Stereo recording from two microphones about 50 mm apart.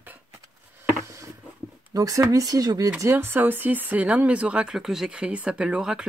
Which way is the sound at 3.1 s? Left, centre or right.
Right.